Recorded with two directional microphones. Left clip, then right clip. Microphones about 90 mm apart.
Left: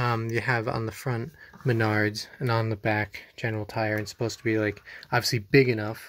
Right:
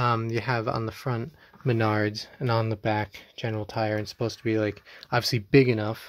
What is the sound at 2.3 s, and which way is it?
Speech, 15° right (ahead or behind).